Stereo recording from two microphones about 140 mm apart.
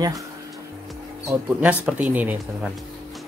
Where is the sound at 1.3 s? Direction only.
10° right (ahead or behind).